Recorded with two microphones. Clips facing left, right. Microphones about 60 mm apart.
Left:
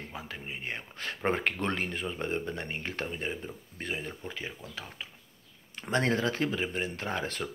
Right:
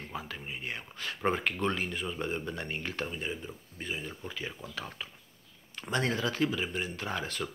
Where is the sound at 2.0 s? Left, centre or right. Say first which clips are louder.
Left 2 dB; left.